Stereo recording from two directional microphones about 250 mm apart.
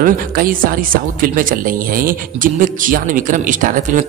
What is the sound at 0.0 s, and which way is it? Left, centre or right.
A man's voice, right.